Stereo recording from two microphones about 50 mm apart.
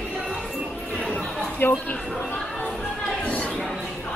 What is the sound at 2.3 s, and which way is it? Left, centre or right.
Music, left.